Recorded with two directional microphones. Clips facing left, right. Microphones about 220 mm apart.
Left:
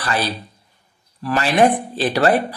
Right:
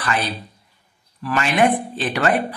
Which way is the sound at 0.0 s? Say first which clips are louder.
Left 1 dB; 35° left (ahead or behind).